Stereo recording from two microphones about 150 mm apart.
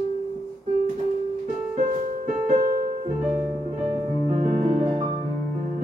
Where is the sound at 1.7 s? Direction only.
45° right (ahead or behind).